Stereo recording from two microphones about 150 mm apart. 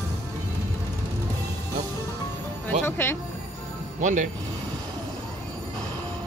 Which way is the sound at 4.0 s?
55° right (ahead or behind).